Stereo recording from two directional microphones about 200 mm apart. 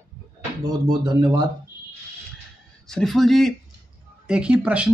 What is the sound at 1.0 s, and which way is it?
Speech, 20° right (ahead or behind).